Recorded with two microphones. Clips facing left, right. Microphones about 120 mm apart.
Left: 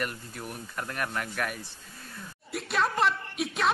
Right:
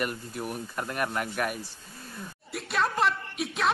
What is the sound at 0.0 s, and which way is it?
Speech, 10° right (ahead or behind).